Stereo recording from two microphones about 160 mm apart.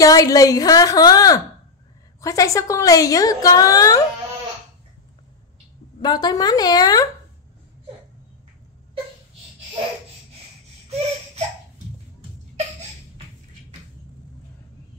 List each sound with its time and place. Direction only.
0.0 s a woman's voice: 20° left (ahead or behind)
5.9 s a woman's voice: 25° left (ahead or behind)